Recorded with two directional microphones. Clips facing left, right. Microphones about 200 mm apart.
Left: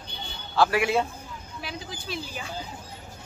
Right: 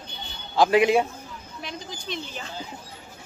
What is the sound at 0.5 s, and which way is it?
Speech, 20° right (ahead or behind).